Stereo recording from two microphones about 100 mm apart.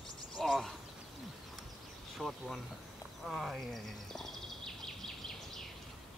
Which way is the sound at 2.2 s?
Centre (ahead or behind).